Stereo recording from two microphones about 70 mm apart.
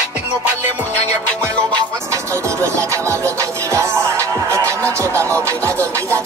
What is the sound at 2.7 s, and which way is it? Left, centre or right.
Music, right.